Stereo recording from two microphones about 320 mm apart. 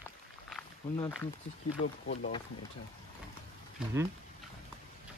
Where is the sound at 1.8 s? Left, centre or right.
Left.